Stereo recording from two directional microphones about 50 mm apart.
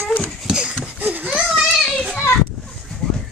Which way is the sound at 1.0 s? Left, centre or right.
Right.